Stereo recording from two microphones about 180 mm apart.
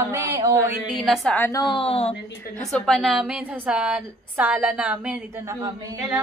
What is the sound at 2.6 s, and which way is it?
A woman's voice, 5° left (ahead or behind).